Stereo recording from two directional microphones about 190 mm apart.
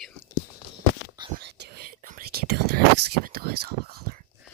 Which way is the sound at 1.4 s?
60° right (ahead or behind).